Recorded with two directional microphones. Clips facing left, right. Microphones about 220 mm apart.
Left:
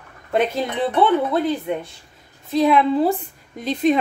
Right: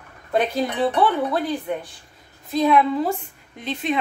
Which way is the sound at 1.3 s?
25° left (ahead or behind).